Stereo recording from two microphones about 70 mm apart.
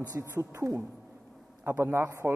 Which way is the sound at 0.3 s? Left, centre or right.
Right.